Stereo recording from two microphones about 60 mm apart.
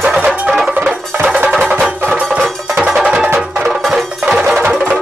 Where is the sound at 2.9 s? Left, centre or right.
Centre.